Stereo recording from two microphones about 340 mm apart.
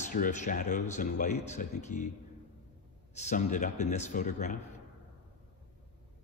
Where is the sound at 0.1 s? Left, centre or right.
Left.